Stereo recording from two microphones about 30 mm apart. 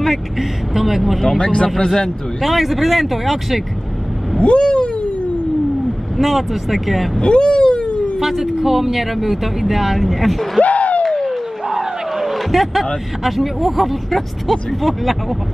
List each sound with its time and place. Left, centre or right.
0.4 s speech: centre
1.4 s speech: left
2.4 s speech: centre
4.4 s speech: left
6.1 s speech: centre
7.2 s a sound: left
8.2 s speech: centre
10.6 s a sound: left
11.1 s a sound: centre
12.2 s speech: centre